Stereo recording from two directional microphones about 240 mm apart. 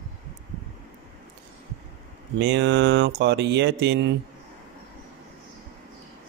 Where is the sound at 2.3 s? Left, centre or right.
Right.